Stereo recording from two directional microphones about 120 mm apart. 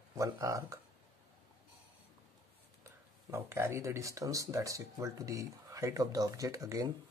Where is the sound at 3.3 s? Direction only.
20° right (ahead or behind).